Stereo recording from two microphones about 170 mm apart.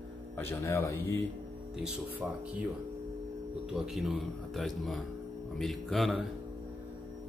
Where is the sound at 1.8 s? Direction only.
10° right (ahead or behind).